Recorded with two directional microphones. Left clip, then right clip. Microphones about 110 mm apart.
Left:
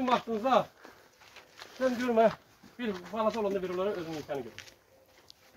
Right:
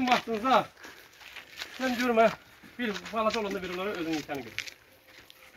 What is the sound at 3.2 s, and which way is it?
Speech, 35° right (ahead or behind).